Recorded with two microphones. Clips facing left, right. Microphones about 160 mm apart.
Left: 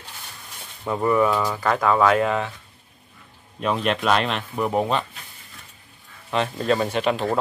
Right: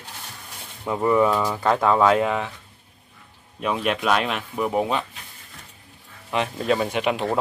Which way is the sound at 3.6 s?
5° right (ahead or behind).